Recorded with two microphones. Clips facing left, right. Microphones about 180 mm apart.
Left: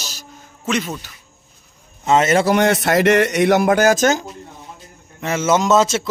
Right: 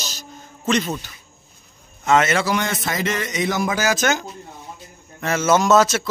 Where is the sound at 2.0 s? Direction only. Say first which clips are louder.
Left 2 dB; 35° left (ahead or behind).